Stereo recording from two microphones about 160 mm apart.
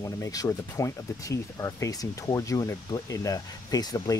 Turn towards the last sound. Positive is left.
turn(degrees=25)  # may be behind; listen again after turning